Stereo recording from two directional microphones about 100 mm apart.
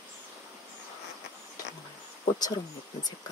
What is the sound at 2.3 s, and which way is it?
Speech, 40° left (ahead or behind).